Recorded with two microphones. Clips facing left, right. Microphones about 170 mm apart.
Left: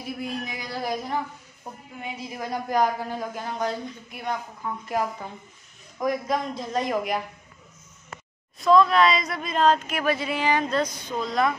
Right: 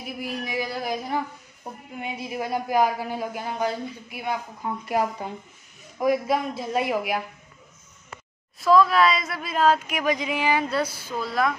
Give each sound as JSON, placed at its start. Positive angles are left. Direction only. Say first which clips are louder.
{"t": 0.0, "sound": "speech", "louder": "even", "side_deg": -5}
{"t": 1.6, "sound": "a sound", "louder": "right 2 dB", "side_deg": -15}
{"t": 2.2, "sound": "a man's voice", "louder": "right 3 dB", "side_deg": -10}
{"t": 8.5, "sound": "speech", "louder": "even", "side_deg": 0}